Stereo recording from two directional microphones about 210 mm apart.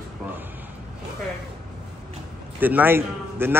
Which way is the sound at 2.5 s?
10° right (ahead or behind).